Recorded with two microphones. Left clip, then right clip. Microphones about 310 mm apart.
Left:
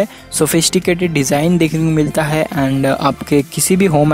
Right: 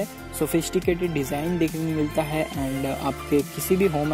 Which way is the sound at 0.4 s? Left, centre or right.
Left.